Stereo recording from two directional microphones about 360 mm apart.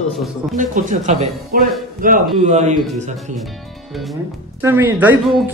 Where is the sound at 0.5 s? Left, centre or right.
Right.